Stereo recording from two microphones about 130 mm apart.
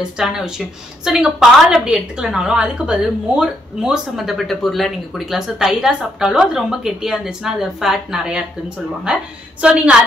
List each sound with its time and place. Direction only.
0.2 s a woman's voice: 5° right (ahead or behind)